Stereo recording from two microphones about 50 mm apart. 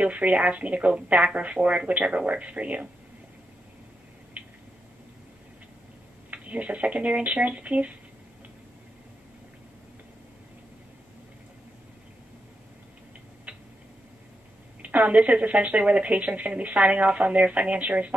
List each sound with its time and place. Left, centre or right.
0.0 s a woman's voice: right
6.3 s a woman's voice: right
13.5 s a sound: right
14.8 s a woman's voice: right